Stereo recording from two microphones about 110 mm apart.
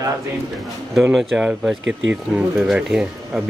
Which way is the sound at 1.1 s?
Centre (ahead or behind).